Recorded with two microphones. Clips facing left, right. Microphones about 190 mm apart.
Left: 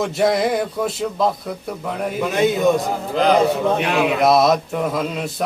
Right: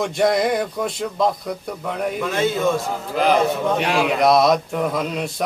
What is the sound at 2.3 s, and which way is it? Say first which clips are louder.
Speech: left 4 dB; 15° left (ahead or behind).